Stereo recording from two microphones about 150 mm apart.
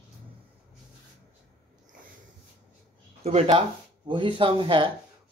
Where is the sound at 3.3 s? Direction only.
45° right (ahead or behind).